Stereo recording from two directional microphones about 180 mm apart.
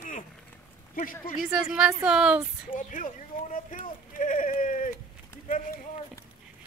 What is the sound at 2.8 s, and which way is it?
Speech, 45° left (ahead or behind).